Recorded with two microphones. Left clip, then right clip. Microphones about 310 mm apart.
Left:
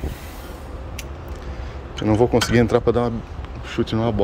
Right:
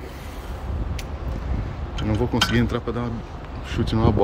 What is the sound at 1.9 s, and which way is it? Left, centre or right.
Speech, centre.